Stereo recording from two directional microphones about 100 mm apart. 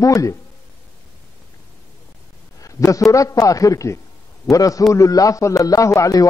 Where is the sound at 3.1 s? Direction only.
35° left (ahead or behind).